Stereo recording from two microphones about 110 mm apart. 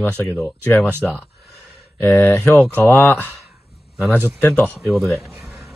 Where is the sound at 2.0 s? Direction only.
20° left (ahead or behind).